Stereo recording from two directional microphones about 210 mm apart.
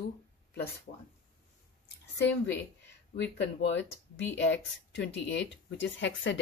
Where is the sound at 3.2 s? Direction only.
55° left (ahead or behind).